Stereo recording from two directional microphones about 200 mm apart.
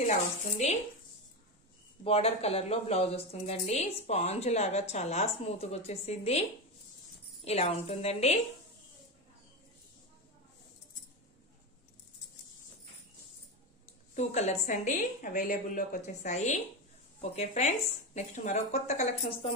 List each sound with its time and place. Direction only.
2.0 s a woman's voice: 30° left (ahead or behind)
7.4 s a woman's voice: 30° left (ahead or behind)
14.1 s a woman's voice: 35° left (ahead or behind)